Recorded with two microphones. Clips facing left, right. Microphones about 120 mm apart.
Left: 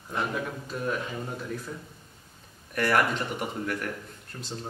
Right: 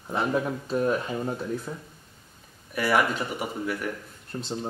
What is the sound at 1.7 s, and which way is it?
Speech, 20° right (ahead or behind).